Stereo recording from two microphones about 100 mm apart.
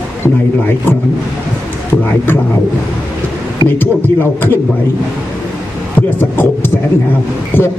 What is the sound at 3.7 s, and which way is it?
Speech, 20° left (ahead or behind).